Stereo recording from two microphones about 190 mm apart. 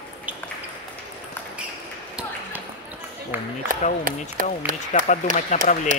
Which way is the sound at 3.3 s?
10° right (ahead or behind).